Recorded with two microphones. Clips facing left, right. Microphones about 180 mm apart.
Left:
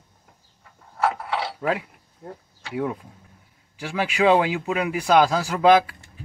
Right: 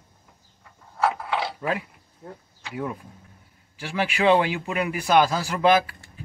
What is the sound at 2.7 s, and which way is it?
Speech, 15° left (ahead or behind).